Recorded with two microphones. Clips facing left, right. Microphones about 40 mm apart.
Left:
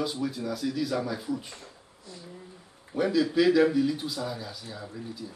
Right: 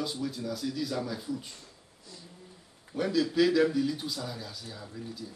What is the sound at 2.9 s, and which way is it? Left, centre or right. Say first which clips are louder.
Speech: left 2 dB; centre.